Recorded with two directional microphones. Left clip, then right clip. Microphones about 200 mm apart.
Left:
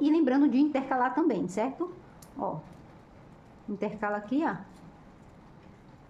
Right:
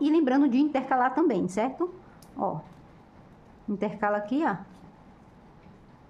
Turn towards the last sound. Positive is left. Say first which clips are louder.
# right 4 dB
turn(degrees=-15)  # may be behind; listen again after turning